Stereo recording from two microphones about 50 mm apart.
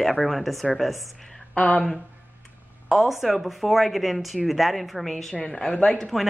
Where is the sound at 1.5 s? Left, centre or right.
Left.